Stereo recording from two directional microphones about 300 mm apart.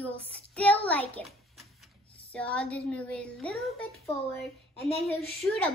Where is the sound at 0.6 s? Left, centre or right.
Centre.